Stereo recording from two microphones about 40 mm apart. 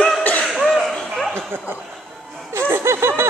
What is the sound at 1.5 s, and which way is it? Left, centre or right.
Chuckle, right.